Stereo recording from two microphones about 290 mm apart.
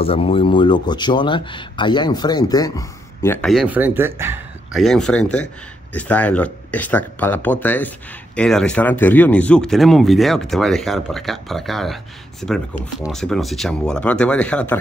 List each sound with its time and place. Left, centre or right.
0.0 s speech: centre